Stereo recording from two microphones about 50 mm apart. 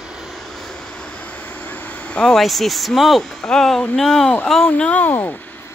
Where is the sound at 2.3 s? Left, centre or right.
Centre.